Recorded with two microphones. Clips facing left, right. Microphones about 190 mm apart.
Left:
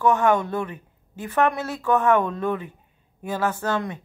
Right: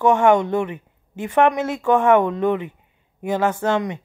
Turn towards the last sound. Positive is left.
turn(degrees=-20)  # may be behind; listen again after turning